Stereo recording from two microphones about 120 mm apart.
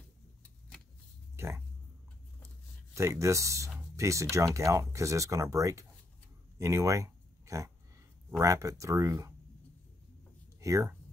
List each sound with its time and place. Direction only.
0.4 s vehicle: 5° left (ahead or behind)
1.3 s a sound: 20° right (ahead or behind)
3.9 s speech: 25° right (ahead or behind)
10.6 s speech: 25° right (ahead or behind)